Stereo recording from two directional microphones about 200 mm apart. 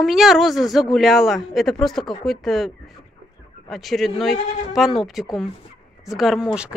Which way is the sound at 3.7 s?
Centre (ahead or behind).